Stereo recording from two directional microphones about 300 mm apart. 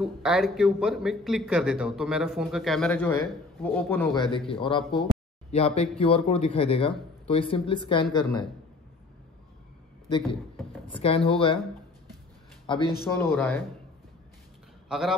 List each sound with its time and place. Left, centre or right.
0.0 s speech: centre
4.5 s speech: centre
11.0 s speech: centre
13.0 s speech: centre
14.9 s a man's voice: centre